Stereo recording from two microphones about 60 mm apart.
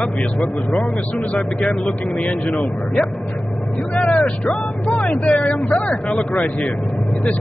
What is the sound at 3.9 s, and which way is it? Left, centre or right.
Speech, centre.